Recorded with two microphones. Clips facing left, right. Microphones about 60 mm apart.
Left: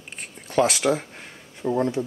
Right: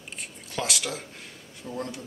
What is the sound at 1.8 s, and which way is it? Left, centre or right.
Speech, left.